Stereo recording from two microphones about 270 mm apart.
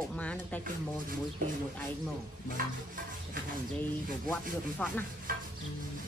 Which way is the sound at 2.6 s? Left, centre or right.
Right.